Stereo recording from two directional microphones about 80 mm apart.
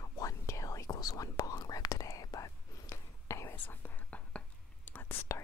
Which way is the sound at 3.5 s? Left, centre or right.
Left.